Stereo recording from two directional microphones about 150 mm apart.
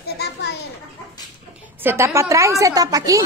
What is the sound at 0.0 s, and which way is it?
Children playing, 90° left.